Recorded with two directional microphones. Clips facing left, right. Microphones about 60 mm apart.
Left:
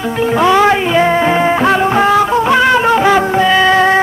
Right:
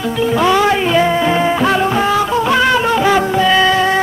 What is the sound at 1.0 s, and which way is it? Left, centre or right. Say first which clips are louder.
Music: left 2 dB; left.